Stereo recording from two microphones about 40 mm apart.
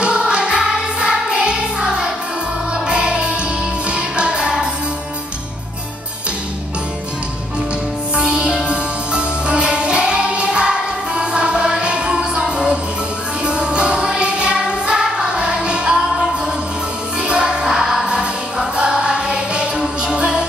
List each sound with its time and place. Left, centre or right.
0.0 s music: right
8.2 s music: right
17.2 s music: right
18.0 s music: right